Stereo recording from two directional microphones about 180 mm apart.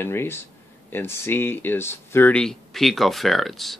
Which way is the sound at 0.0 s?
15° left (ahead or behind).